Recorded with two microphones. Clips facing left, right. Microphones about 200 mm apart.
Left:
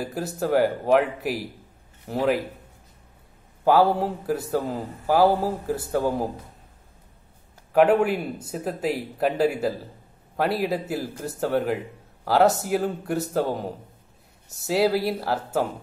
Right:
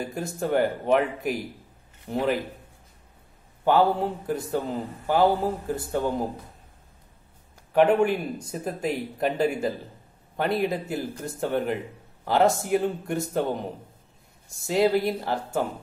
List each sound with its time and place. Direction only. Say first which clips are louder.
0.0 s speech: left 2 dB; 5° left (ahead or behind)
3.6 s a man's voice: left 2 dB; 5° left (ahead or behind)
7.7 s speech: left 1 dB; 5° left (ahead or behind)
14.7 s speech: even; 5° left (ahead or behind)